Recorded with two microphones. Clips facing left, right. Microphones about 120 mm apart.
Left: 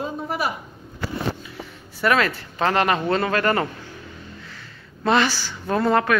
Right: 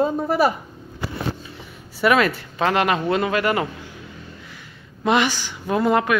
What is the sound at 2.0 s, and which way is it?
Speech, 10° right (ahead or behind).